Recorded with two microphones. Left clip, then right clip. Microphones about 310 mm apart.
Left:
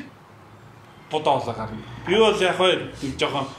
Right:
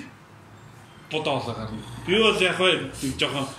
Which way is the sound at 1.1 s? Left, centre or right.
Left.